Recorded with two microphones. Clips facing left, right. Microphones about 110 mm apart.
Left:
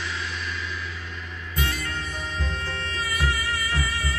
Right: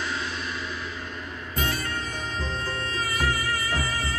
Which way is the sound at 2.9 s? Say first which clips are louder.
Right 1 dB; 40° right (ahead or behind).